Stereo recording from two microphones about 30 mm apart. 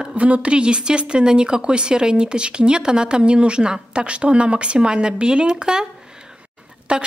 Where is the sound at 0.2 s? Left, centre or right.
Right.